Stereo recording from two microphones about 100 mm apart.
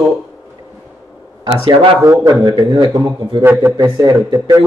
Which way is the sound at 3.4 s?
20° right (ahead or behind).